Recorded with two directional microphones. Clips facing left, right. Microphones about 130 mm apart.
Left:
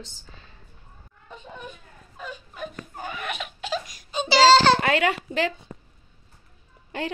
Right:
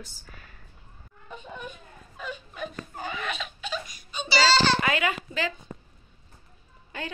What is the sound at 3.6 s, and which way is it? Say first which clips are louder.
Crying: left 4 dB; 90° left.